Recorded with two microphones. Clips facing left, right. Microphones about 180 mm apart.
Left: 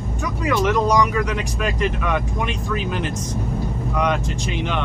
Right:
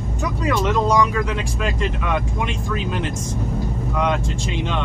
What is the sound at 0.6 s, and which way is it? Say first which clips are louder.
Speech: left 1 dB; 25° right (ahead or behind).